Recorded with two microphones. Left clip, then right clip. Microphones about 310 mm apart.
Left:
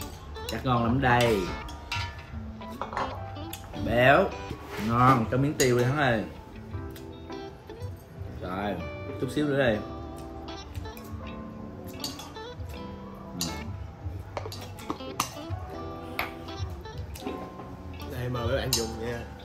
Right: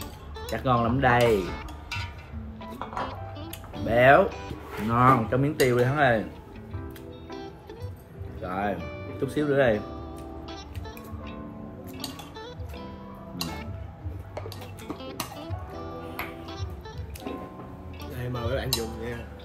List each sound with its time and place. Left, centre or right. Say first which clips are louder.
0.0 s music: left 1 dB; centre
8.4 s music: right 3 dB; centre
11.9 s music: left 1 dB; centre
15.0 s music: left 4 dB; centre
18.0 s music: left 1 dB; centre